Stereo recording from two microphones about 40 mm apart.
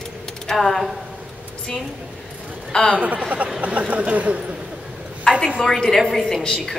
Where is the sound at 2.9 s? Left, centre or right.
Right.